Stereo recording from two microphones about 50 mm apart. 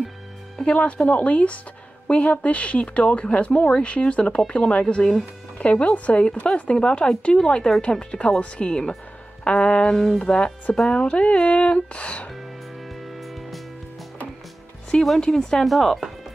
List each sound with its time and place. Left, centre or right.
0.7 s a woman's voice: left
13.0 s music: centre
15.1 s speech: centre